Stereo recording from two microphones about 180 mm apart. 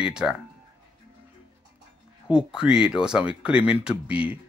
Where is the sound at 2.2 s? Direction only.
5° right (ahead or behind).